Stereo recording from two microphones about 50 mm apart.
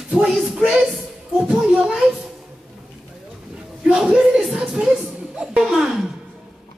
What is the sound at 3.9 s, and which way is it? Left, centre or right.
Speech, centre.